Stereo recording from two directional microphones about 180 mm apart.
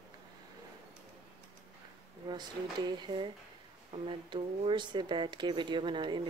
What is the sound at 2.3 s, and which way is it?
Speech, 25° right (ahead or behind).